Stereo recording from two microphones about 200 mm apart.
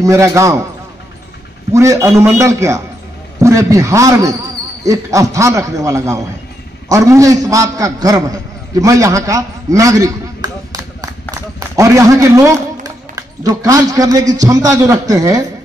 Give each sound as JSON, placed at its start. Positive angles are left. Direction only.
{"t": 0.0, "sound": "a man's voice", "side_deg": -15}
{"t": 1.7, "sound": "a man's voice", "side_deg": -15}